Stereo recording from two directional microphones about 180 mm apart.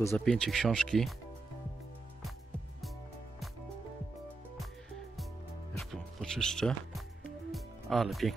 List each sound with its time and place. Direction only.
0.2 s speech: 5° left (ahead or behind)
5.8 s music: 5° left (ahead or behind)